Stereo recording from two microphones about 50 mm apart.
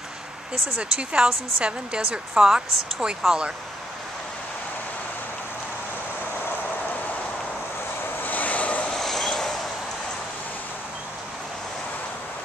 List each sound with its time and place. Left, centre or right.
0.7 s speech: centre
2.0 s speech: centre
8.2 s vehicle: left
8.9 s train: centre